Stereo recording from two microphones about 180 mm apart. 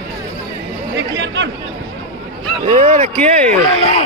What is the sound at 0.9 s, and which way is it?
Speech, 90° right.